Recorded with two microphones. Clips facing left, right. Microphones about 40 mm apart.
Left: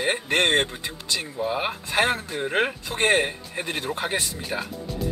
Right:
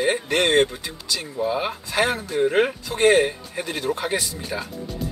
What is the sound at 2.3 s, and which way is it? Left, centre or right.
Speech, centre.